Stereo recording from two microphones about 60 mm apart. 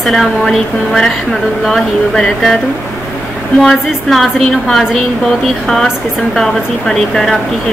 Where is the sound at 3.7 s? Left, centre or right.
Centre.